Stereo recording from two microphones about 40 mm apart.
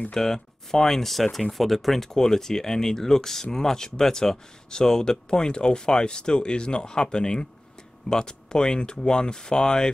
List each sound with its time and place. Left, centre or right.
0.1 s speech: centre